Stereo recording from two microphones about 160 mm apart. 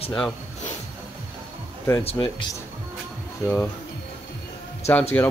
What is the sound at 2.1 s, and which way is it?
Speech, 35° left (ahead or behind).